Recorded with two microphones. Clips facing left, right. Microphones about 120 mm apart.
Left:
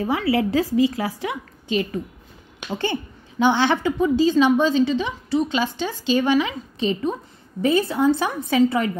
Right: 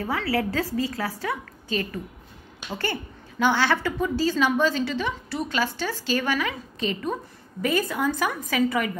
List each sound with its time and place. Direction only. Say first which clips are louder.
0.0 s a woman's voice: left 5 dB; 20° left (ahead or behind)
2.7 s a woman's voice: left 5 dB; 20° left (ahead or behind)